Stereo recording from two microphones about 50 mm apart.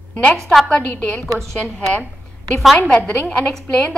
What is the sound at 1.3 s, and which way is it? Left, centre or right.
Speech, centre.